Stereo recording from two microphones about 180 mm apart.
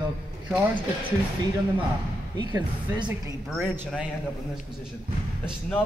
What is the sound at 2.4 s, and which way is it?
Speech, 25° right (ahead or behind).